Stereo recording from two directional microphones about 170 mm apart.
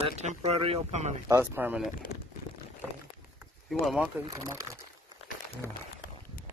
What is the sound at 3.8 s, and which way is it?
Speech, centre (ahead or behind).